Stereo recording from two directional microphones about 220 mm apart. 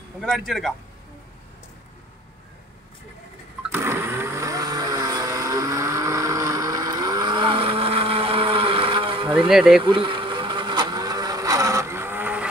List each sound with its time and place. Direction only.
0.2 s speech: centre (ahead or behind)
3.7 s vehicle: 10° right (ahead or behind)
9.5 s speech: centre (ahead or behind)
9.8 s vehicle: 25° right (ahead or behind)